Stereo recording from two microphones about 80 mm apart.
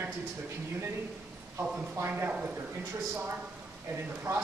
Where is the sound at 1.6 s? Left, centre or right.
Right.